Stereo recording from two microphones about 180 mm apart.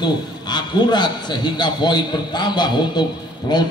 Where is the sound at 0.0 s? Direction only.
25° left (ahead or behind).